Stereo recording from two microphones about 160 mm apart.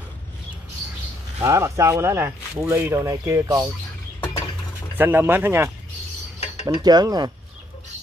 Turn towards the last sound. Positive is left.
turn(degrees=-25)  # may be behind; listen again after turning